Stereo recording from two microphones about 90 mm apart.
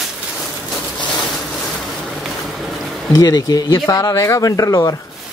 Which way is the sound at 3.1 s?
45° left (ahead or behind).